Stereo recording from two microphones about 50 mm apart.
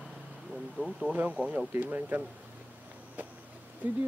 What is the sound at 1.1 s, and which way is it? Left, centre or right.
Speech, right.